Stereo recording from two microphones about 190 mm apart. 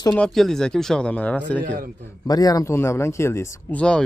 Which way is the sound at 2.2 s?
20° left (ahead or behind).